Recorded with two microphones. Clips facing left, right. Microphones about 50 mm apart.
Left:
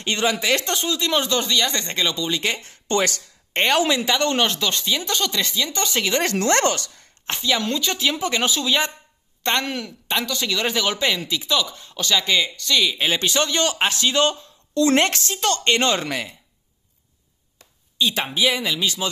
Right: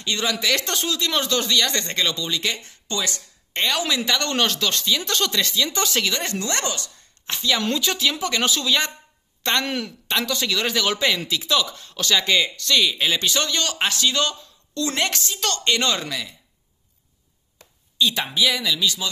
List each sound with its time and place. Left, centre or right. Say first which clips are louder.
0.0 s speech: left 3 dB; left
0.4 s speech: left 1 dB; left
0.7 s speech: left 2 dB; centre
2.6 s speech: left 6 dB; left
4.1 s speech: left 2 dB; centre
6.2 s speech: left 7 dB; left
7.3 s speech: left 1 dB; centre
7.6 s speech: right 1 dB; centre
8.0 s a woman's voice: left 1 dB; centre
9.7 s speech: even; centre
13.0 s speech: left 1 dB; left
14.3 s a sound: left 7 dB; left
14.9 s speech: left 5 dB; left
17.9 s speech: even; left